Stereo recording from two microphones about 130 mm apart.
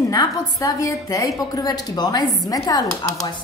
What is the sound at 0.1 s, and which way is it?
A woman's voice, 25° left (ahead or behind).